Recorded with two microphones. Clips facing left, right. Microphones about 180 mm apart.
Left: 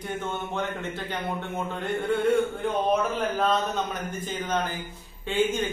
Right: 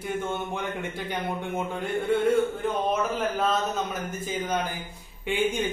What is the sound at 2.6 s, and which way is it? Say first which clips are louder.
A man's voice: left 2 dB; centre (ahead or behind).